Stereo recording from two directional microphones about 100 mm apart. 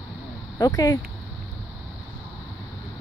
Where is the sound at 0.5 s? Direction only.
35° left (ahead or behind).